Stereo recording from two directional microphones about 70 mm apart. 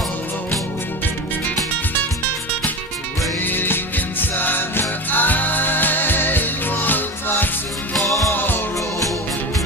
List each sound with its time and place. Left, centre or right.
3.4 s music: left
7.9 s music: centre
8.3 s music: left